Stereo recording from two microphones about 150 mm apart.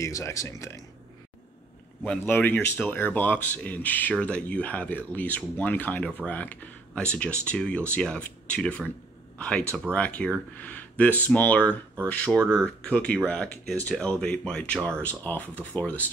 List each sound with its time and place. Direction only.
0.0 s speech: 20° left (ahead or behind)
2.0 s speech: 10° left (ahead or behind)